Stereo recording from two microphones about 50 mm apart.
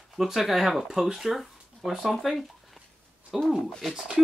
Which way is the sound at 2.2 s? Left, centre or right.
Centre.